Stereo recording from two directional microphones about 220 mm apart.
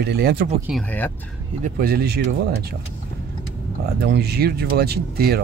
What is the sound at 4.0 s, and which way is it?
Speech, 45° right (ahead or behind).